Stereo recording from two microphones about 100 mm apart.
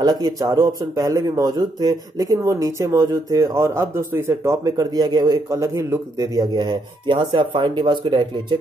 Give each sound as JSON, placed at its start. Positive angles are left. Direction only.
{"t": 0.0, "sound": "speech", "side_deg": -40}
{"t": 5.5, "sound": "speech", "side_deg": -30}